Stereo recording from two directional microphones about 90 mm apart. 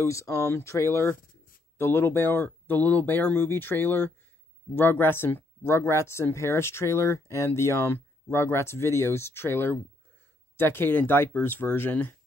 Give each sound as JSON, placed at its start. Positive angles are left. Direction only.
{"t": 0.0, "sound": "speech", "side_deg": 35}